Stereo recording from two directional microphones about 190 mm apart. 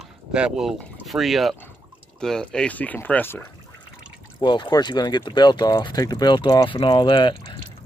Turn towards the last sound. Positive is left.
turn(degrees=25)  # may be behind; listen again after turning